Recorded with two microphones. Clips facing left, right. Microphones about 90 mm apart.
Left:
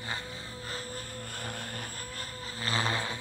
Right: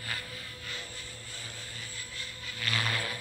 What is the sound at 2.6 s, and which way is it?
Vehicle, 30° left (ahead or behind).